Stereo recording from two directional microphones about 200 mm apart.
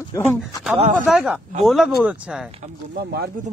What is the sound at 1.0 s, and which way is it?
Speech, 5° right (ahead or behind).